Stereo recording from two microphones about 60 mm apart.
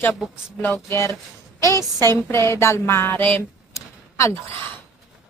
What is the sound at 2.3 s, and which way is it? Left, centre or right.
A woman's voice, left.